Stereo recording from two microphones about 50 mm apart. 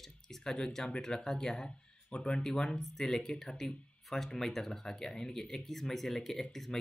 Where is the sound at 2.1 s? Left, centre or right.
Centre.